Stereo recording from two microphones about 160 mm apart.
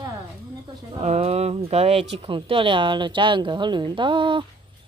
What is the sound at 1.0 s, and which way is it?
Speech, 40° right (ahead or behind).